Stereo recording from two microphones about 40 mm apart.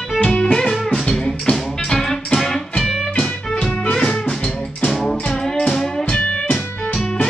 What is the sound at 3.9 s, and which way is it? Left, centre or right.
Music, centre.